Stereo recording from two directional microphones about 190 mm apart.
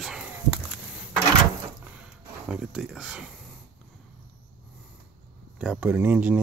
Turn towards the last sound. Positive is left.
turn(degrees=-5)  # may be behind; listen again after turning